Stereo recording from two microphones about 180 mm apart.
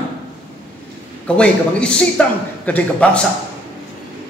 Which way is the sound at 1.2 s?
5° left (ahead or behind).